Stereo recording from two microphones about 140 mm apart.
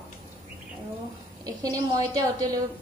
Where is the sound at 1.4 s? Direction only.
25° right (ahead or behind).